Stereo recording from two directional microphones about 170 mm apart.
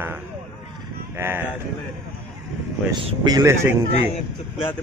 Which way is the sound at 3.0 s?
25° right (ahead or behind).